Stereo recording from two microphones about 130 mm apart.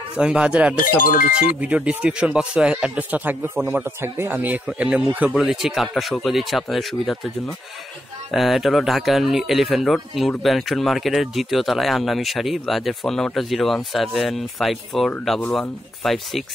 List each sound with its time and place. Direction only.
0.2 s speech: 10° right (ahead or behind)
0.9 s music: 90° left
1.6 s speech: 10° right (ahead or behind)